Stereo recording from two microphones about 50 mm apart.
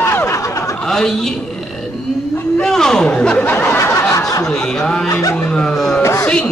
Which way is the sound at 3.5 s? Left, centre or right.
Left.